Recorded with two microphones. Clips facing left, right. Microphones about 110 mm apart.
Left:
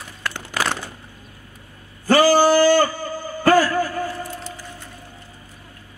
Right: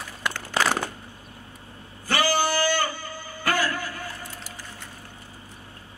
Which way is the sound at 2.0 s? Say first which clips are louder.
Left 10 dB; 40° left (ahead or behind).